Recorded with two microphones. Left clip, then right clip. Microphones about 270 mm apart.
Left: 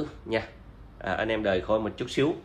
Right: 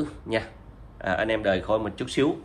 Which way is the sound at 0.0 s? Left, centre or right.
Right.